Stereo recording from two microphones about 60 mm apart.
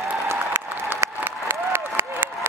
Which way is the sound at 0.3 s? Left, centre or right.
Right.